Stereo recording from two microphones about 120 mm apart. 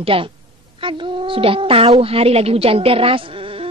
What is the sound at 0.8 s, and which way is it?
A woman's voice, 45° right (ahead or behind).